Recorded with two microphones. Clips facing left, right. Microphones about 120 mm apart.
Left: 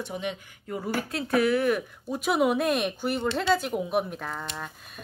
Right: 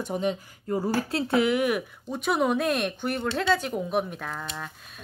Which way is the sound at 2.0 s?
5° left (ahead or behind).